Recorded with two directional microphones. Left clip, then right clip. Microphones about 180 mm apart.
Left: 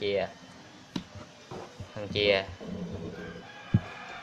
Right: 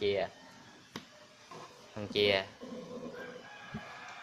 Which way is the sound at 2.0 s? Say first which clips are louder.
Left 4 dB; 10° right (ahead or behind).